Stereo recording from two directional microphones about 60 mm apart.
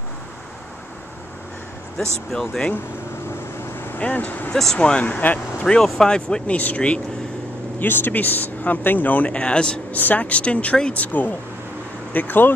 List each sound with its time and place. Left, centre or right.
2.3 s speech: centre
4.0 s speech: left
5.9 s speech: centre
7.8 s speech: left; by 9.8 s centre
9.9 s speech: left